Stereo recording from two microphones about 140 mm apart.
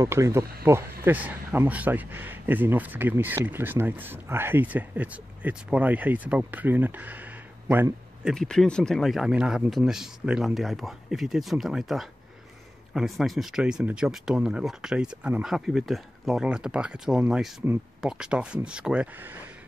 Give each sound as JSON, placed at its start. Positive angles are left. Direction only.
{"t": 0.0, "sound": "speech", "side_deg": -20}
{"t": 8.3, "sound": "speech", "side_deg": 5}